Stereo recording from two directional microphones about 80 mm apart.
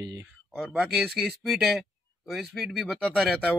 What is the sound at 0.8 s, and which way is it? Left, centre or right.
Speech, centre.